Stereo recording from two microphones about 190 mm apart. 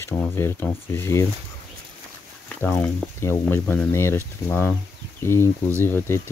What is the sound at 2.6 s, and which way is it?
Speech, 10° left (ahead or behind).